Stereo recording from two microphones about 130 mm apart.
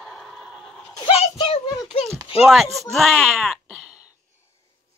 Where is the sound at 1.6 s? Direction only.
30° left (ahead or behind).